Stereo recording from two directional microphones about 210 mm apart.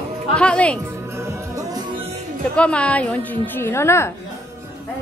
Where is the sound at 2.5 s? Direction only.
5° left (ahead or behind).